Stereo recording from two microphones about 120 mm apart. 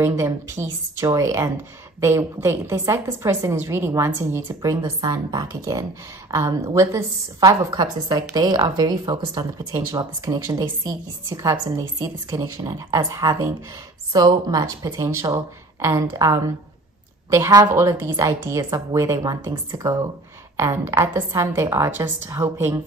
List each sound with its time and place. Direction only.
0.0 s a woman's voice: 20° right (ahead or behind)